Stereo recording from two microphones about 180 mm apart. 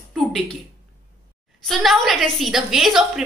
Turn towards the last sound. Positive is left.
turn(degrees=0)  # may be behind; listen again after turning